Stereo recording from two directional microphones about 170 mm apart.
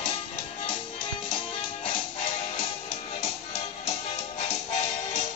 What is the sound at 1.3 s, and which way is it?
Music, 30° left (ahead or behind).